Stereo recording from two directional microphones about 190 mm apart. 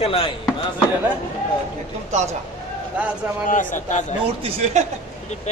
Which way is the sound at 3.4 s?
40° left (ahead or behind).